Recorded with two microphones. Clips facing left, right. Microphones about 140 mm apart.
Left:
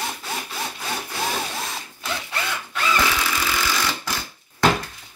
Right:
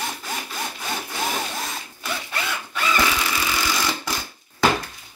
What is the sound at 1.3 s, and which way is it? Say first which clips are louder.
Drill: even; 5° right (ahead or behind).